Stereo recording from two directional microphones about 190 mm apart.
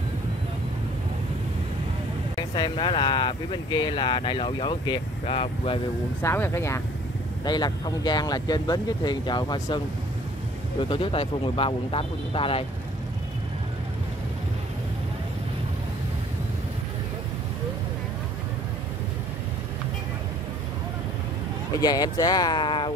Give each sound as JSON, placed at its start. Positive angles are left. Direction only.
{"t": 2.3, "sound": "speech", "side_deg": 25}
{"t": 6.2, "sound": "speech", "side_deg": 10}
{"t": 10.8, "sound": "speech", "side_deg": 25}
{"t": 21.7, "sound": "speech", "side_deg": 20}